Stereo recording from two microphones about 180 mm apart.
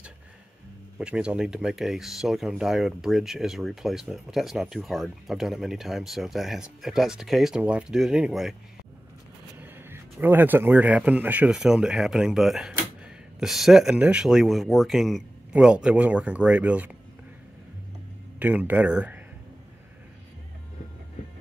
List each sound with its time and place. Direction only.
0.9 s speech: 5° right (ahead or behind)
9.6 s speech: 10° right (ahead or behind)
18.4 s speech: 10° right (ahead or behind)